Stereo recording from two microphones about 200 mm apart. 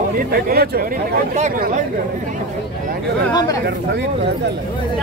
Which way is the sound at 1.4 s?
40° right (ahead or behind).